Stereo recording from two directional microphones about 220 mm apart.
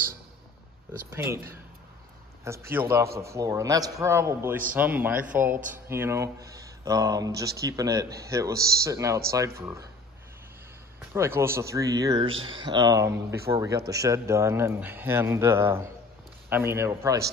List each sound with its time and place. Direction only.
1.1 s speech: 10° right (ahead or behind)
8.5 s a man's voice: 45° right (ahead or behind)
8.8 s speech: 15° right (ahead or behind)
11.1 s speech: 10° right (ahead or behind)